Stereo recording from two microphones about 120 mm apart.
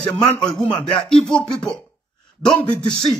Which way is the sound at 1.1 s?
5° left (ahead or behind).